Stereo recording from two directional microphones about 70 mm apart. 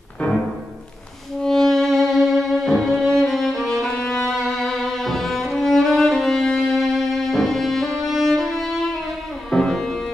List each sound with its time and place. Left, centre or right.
1.4 s music: centre